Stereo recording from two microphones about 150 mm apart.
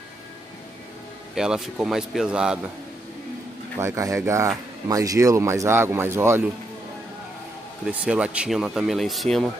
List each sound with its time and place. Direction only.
1.3 s speech: 5° right (ahead or behind)
3.8 s speech: 20° right (ahead or behind)
7.8 s speech: 5° right (ahead or behind)